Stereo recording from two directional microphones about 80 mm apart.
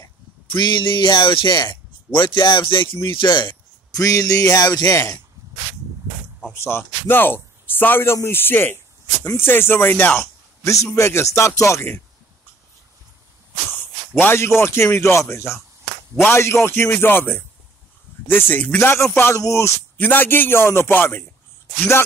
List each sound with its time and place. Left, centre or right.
0.5 s music: left
1.5 s speech: left
3.2 s music: left
3.9 s music: left
4.8 s speech: left
6.5 s speech: left
10.6 s speech: left
14.2 s speech: left
20.0 s speech: left